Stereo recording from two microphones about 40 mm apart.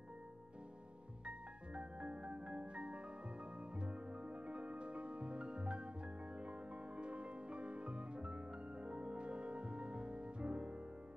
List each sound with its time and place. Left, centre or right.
1.2 s music: right